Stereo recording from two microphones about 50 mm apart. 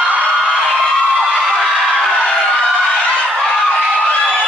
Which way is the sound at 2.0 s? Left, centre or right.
Centre.